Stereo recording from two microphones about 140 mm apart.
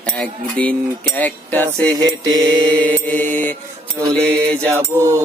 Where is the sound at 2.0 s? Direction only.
25° right (ahead or behind).